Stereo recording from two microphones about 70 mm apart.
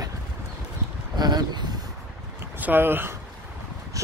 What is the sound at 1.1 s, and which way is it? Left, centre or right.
Speech, right.